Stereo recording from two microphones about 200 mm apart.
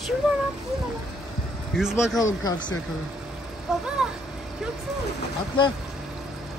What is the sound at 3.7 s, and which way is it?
Speech, 5° right (ahead or behind).